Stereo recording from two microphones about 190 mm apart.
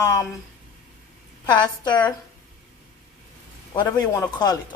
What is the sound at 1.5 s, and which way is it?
Speech, 25° left (ahead or behind).